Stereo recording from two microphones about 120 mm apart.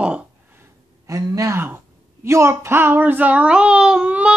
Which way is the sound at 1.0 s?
30° right (ahead or behind).